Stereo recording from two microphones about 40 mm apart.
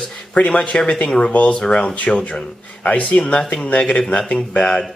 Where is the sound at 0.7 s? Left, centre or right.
Left.